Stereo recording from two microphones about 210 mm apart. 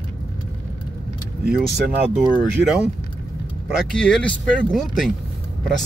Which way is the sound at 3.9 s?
5° left (ahead or behind).